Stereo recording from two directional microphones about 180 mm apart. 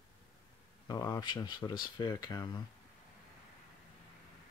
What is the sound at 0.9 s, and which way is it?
Speech, 20° left (ahead or behind).